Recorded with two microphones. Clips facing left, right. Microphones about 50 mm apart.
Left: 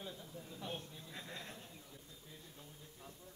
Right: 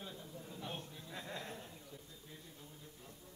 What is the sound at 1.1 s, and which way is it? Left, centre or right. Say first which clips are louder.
Speech: right 4 dB; right.